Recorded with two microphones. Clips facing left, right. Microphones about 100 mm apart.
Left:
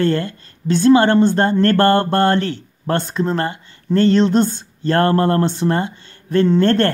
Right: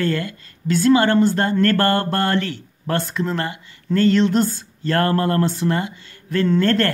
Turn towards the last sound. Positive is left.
turn(degrees=25)  # may be behind; listen again after turning